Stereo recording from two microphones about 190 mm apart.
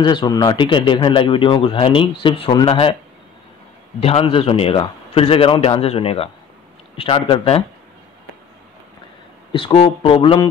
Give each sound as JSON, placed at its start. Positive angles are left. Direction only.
{"t": 0.0, "sound": "speech", "side_deg": 25}
{"t": 4.0, "sound": "speech", "side_deg": 30}
{"t": 9.5, "sound": "speech", "side_deg": 25}